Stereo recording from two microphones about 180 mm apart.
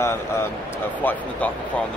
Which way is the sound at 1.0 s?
10° left (ahead or behind).